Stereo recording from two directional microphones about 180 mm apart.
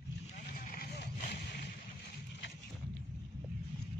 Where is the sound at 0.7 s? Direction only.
55° left (ahead or behind).